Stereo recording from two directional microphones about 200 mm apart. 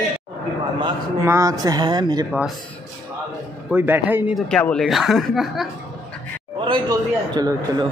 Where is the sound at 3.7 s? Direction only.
10° right (ahead or behind).